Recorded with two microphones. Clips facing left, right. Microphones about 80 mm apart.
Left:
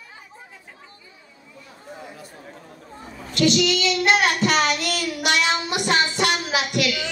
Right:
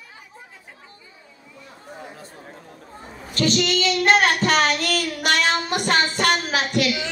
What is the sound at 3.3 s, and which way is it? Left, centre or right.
Child singing, right.